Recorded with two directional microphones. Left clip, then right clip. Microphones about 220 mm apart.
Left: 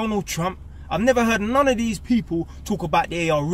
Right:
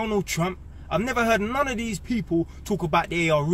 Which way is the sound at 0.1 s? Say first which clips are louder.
Left 1 dB; centre (ahead or behind).